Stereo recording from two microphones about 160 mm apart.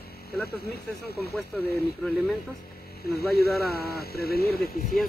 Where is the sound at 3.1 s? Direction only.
80° left.